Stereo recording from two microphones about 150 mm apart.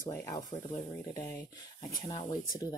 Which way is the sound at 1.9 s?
30° left (ahead or behind).